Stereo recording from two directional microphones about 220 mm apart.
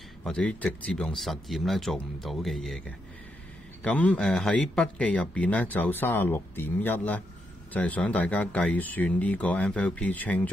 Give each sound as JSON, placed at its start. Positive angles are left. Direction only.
{"t": 0.2, "sound": "speech", "side_deg": 5}
{"t": 3.8, "sound": "speech", "side_deg": 5}